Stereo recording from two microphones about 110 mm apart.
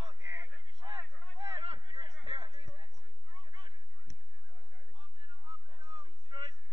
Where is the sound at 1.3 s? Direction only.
60° right (ahead or behind).